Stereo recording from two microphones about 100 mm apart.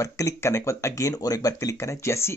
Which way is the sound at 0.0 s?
30° left (ahead or behind).